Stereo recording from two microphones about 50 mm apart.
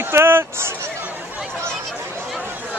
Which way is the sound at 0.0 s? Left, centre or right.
Right.